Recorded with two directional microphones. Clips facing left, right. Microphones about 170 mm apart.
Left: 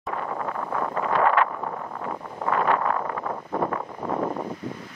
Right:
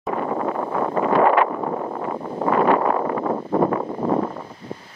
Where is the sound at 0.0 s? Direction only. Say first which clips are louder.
Right 6 dB; 25° right (ahead or behind).